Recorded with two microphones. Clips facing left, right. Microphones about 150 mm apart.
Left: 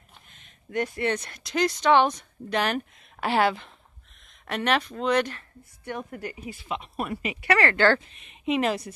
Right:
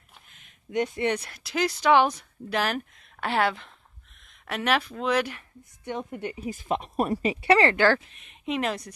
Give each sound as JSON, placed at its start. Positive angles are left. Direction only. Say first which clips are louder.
{"t": 0.7, "sound": "speech", "louder": "right 1 dB", "side_deg": -20}
{"t": 1.1, "sound": "speech", "louder": "left 1 dB", "side_deg": -5}
{"t": 6.5, "sound": "speech", "louder": "right 5 dB", "side_deg": -45}
{"t": 7.7, "sound": "speech", "louder": "even", "side_deg": -10}